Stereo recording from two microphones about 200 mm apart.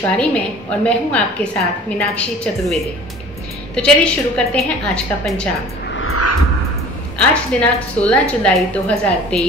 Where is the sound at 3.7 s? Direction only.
5° left (ahead or behind).